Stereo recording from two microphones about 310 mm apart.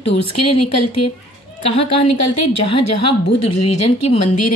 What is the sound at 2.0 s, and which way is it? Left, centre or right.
Speech, left.